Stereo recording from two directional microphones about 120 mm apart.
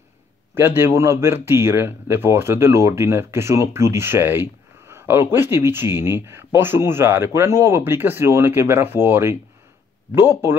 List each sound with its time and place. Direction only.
0.6 s speech: 20° right (ahead or behind)